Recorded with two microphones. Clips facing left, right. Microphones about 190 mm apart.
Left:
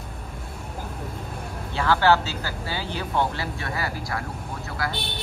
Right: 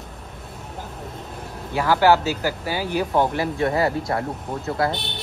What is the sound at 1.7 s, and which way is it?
Speech, 15° right (ahead or behind).